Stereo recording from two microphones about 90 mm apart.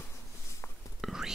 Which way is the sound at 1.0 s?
5° right (ahead or behind).